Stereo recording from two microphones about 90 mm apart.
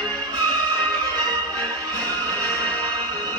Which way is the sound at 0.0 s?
50° right (ahead or behind).